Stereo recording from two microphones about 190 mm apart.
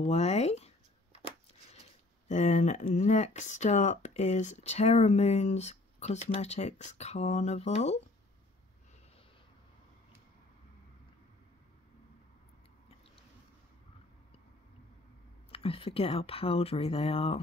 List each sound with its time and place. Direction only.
0.0 s speech: 35° left (ahead or behind)
2.2 s speech: 35° left (ahead or behind)
15.5 s speech: 30° left (ahead or behind)